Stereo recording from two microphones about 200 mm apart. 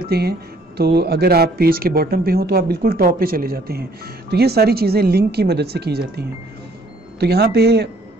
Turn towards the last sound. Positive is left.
turn(degrees=-55)  # may be behind; listen again after turning